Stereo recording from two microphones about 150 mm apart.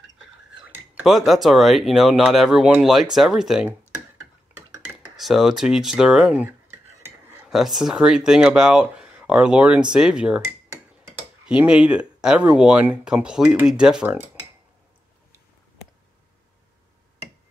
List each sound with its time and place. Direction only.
0.7 s speech: 10° right (ahead or behind)
5.1 s speech: centre (ahead or behind)
11.4 s speech: 5° right (ahead or behind)